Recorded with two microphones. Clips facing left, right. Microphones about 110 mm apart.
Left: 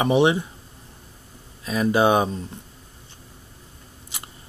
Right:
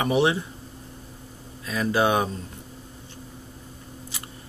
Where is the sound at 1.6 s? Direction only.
20° left (ahead or behind).